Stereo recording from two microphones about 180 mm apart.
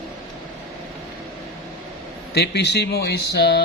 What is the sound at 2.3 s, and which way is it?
Speech, 70° left (ahead or behind).